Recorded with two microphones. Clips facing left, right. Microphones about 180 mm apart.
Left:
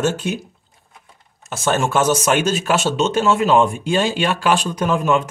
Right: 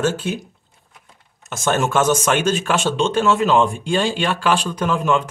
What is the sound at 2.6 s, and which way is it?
Speech, 40° left (ahead or behind).